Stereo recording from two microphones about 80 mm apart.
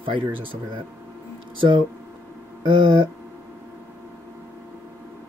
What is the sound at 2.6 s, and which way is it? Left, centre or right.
Speech, right.